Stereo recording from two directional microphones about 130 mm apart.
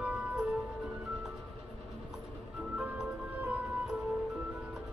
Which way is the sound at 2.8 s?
10° right (ahead or behind).